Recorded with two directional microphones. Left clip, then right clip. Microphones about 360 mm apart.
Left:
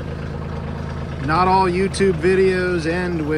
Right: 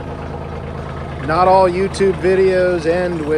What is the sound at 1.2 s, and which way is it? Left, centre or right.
Speech, centre.